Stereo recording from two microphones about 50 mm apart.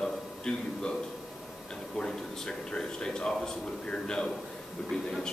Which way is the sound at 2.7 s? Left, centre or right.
Centre.